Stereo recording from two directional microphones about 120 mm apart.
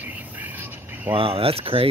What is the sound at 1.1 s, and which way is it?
Speech, 50° right (ahead or behind).